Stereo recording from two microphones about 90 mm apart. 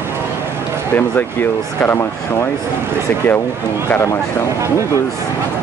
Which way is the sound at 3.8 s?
30° left (ahead or behind).